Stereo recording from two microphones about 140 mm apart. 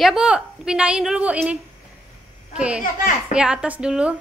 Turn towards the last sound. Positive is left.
turn(degrees=-5)  # may be behind; listen again after turning